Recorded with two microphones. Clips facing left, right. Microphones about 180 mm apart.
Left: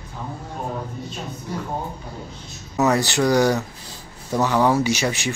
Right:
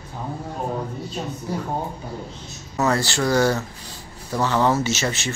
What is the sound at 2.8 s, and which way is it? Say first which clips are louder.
Speech: left 3 dB; 15° left (ahead or behind).